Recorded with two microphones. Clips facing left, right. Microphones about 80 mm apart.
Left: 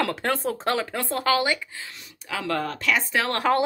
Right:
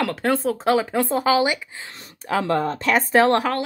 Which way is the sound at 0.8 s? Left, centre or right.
Centre.